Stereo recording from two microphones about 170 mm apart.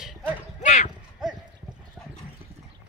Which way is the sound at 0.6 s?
45° left (ahead or behind).